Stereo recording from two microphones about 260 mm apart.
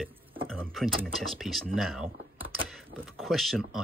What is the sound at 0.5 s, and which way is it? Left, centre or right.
Speech, centre.